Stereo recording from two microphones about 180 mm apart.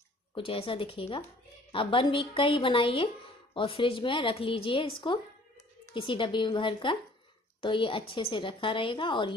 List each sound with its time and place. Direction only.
0.3 s a woman's voice: 30° left (ahead or behind)